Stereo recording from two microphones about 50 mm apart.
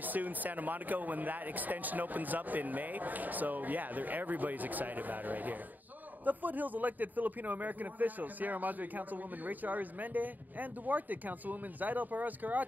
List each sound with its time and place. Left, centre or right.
0.0 s a man's voice: right